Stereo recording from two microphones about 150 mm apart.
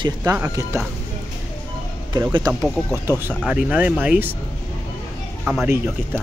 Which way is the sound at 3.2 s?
10° right (ahead or behind).